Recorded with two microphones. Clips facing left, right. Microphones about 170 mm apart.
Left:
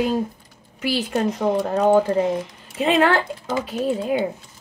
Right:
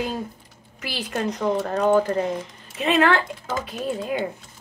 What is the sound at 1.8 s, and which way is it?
Speech, 10° left (ahead or behind).